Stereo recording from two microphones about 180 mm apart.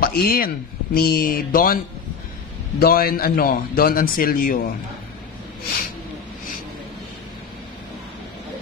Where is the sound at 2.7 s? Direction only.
55° left (ahead or behind).